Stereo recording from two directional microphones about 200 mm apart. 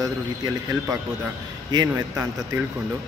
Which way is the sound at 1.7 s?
15° right (ahead or behind).